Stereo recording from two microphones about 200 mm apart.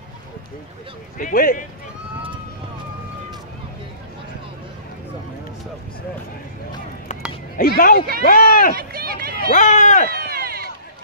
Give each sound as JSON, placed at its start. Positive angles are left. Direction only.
{"t": 1.1, "sound": "speech", "side_deg": 45}
{"t": 7.5, "sound": "speech", "side_deg": 50}
{"t": 8.7, "sound": "speech", "side_deg": -50}
{"t": 9.5, "sound": "speech", "side_deg": 40}
{"t": 10.0, "sound": "run", "side_deg": -50}